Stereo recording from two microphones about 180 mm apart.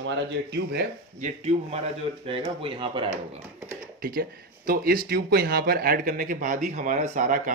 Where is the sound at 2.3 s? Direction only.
30° right (ahead or behind).